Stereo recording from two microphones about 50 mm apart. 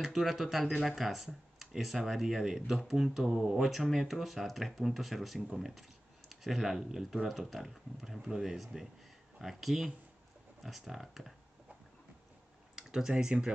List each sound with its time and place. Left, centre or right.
0.0 s speech: centre
8.2 s speech: centre
12.7 s computer keyboard: centre
13.1 s speech: centre